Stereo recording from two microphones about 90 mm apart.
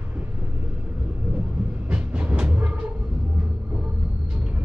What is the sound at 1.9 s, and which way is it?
Train, 15° right (ahead or behind).